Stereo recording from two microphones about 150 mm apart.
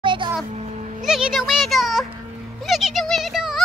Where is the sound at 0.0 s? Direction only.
35° right (ahead or behind).